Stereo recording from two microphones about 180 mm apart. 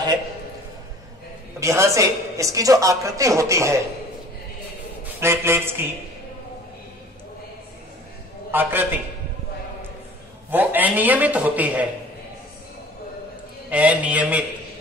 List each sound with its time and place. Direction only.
1.6 s a woman's voice: 15° right (ahead or behind)
5.2 s a woman's voice: 15° right (ahead or behind)
8.5 s a woman's voice: 10° right (ahead or behind)
10.5 s a woman's voice: 10° right (ahead or behind)
13.7 s a woman's voice: 10° right (ahead or behind)